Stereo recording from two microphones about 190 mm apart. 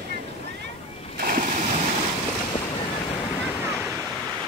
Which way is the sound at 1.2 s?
45° right (ahead or behind).